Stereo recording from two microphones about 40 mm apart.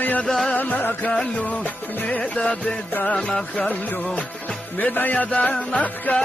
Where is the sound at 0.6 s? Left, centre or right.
Left.